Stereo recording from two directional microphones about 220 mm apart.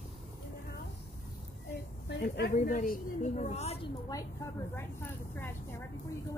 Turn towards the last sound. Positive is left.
turn(degrees=10)  # may be behind; listen again after turning